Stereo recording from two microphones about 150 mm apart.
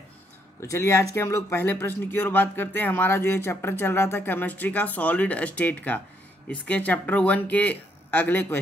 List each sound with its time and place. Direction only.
0.6 s speech: 20° left (ahead or behind)